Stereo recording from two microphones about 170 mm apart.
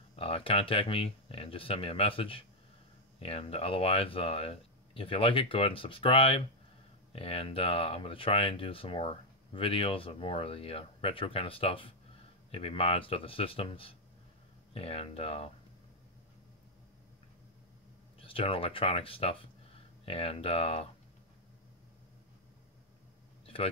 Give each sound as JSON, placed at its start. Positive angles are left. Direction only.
{"t": 0.1, "sound": "speech", "side_deg": 35}
{"t": 18.2, "sound": "speech", "side_deg": 30}
{"t": 23.4, "sound": "a sound", "side_deg": 35}